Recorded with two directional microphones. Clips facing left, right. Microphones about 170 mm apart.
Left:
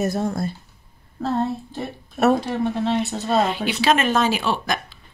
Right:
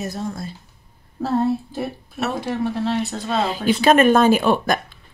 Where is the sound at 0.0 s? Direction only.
50° left (ahead or behind).